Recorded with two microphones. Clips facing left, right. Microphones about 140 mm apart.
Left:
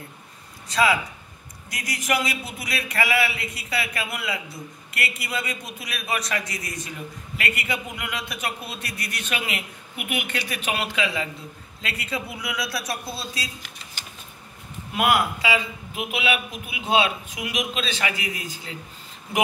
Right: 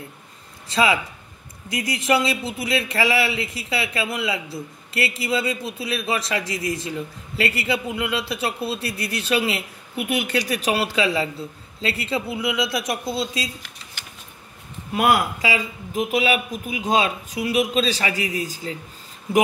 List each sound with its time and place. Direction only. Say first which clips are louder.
0.7 s a man's voice: right 1 dB; 25° right (ahead or behind)
15.0 s a man's voice: right 2 dB; 40° right (ahead or behind)